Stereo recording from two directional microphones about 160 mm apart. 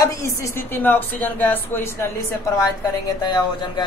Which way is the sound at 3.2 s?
30° left (ahead or behind).